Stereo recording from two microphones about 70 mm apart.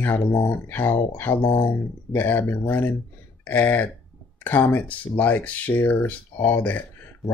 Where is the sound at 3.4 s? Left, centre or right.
Left.